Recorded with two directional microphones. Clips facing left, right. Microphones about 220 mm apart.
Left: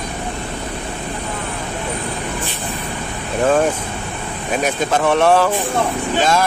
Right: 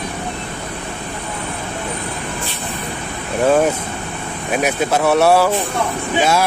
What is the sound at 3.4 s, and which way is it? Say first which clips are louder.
Speech: right 1 dB; 10° right (ahead or behind).